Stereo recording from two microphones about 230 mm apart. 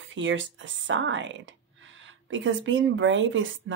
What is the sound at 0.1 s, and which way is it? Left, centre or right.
Speech, right.